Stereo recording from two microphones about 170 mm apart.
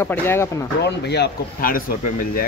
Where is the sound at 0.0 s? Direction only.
15° left (ahead or behind).